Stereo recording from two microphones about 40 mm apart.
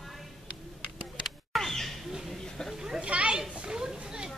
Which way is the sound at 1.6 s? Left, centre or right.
Centre.